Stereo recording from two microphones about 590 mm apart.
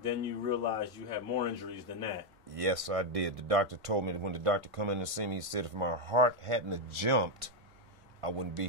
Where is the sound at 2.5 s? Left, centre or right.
Right.